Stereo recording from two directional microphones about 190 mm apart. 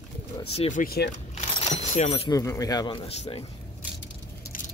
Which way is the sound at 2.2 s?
15° left (ahead or behind).